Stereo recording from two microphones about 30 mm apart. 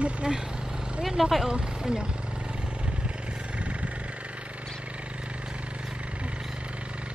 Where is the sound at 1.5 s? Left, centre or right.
Right.